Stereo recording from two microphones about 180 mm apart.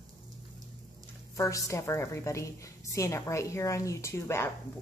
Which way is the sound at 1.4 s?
15° left (ahead or behind).